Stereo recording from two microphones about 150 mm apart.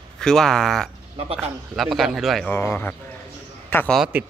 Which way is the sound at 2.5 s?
15° left (ahead or behind).